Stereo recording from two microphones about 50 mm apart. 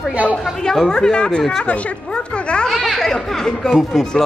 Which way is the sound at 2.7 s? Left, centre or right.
Centre.